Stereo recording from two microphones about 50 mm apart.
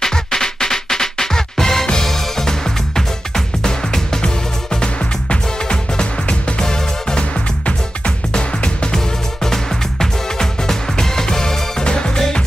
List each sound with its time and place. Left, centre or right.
0.0 s music: centre
5.3 s music: centre